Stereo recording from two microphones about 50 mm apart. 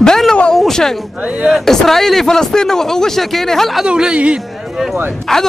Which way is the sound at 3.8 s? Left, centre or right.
Centre.